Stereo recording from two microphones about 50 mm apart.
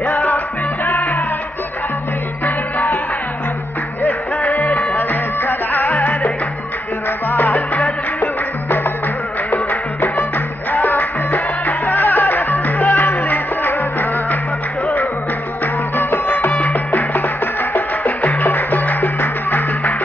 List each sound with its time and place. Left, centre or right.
0.0 s music: left
2.4 s music: left
4.7 s music: left
15.6 s music: left
16.5 s music: left